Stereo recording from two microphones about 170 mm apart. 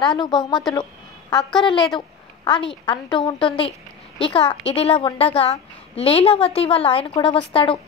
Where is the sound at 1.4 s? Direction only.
Centre (ahead or behind).